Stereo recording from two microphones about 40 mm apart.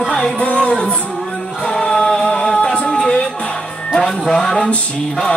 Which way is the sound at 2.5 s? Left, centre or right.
Left.